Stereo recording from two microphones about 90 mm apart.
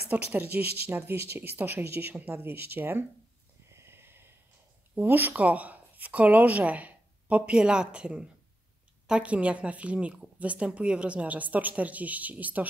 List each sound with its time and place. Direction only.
0.1 s speech: 20° right (ahead or behind)
3.7 s snort: 30° right (ahead or behind)
4.9 s speech: 20° right (ahead or behind)